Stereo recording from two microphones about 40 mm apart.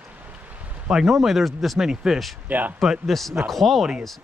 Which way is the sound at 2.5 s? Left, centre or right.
Right.